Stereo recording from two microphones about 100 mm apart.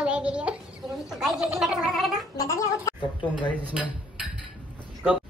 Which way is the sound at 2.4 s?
35° left (ahead or behind).